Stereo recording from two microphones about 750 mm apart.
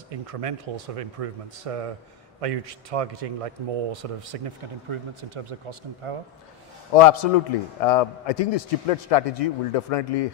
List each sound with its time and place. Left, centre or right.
0.1 s a man's voice: right
6.9 s a man's voice: left